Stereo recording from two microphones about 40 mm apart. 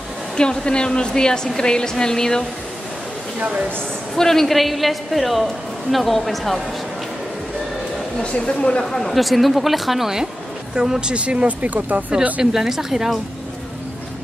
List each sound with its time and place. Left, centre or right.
0.4 s a woman's voice: left
3.3 s speech: right
4.1 s a woman's voice: centre
8.2 s a woman's voice: left
8.8 s a woman's voice: centre; by 12.0 s right
12.5 s speech: centre